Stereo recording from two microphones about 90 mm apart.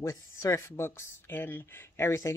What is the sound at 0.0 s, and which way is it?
Speech, 40° left (ahead or behind).